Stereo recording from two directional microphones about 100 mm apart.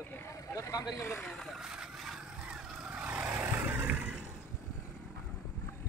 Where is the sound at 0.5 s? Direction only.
30° left (ahead or behind).